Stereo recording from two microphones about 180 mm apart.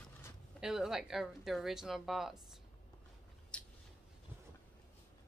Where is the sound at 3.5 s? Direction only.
5° left (ahead or behind).